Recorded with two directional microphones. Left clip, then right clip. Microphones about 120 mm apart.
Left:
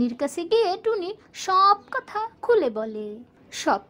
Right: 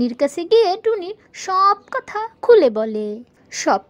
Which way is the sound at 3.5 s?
30° right (ahead or behind).